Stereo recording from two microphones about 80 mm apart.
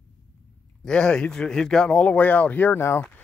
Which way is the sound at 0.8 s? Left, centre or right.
Centre.